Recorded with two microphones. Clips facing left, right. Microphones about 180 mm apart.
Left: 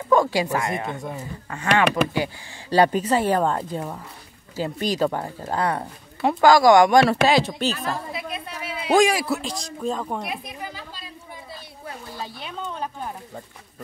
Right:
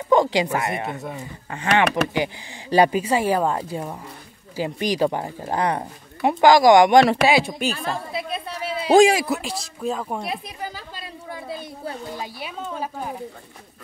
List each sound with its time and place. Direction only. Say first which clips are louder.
0.1 s a sound: right 1 dB; 20° right (ahead or behind)
0.9 s speech: even; 5° right (ahead or behind)
1.5 s speech: right 1 dB; 20° right (ahead or behind)
7.7 s a sound: right 1 dB; 30° right (ahead or behind)
9.4 s speech: even; 5° right (ahead or behind)
10.2 s speech: right 2 dB; 30° right (ahead or behind)
11.0 s chatter: right 6 dB; 60° right (ahead or behind)
12.1 s speech: right 2 dB; 10° right (ahead or behind)